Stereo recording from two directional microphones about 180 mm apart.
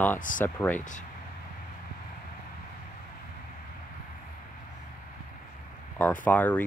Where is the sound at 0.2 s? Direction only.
45° left (ahead or behind).